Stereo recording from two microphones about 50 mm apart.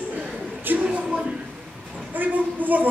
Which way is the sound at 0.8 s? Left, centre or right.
Right.